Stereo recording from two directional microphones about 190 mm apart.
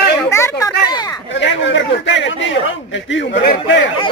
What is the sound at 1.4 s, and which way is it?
Chatter, 70° left (ahead or behind).